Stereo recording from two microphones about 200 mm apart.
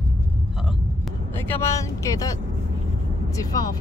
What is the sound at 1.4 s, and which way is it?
Speech, 10° left (ahead or behind).